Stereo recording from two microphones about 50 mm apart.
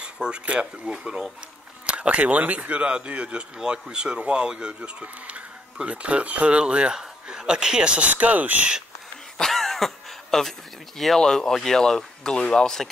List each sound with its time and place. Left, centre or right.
0.0 s speech: centre
9.4 s throat clearing: centre
11.1 s speech: centre